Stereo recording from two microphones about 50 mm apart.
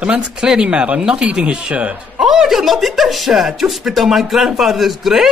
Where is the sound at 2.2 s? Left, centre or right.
Centre.